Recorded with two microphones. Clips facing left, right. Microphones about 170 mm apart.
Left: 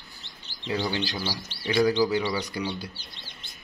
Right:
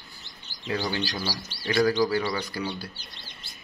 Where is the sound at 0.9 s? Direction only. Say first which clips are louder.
Even; 25° left (ahead or behind).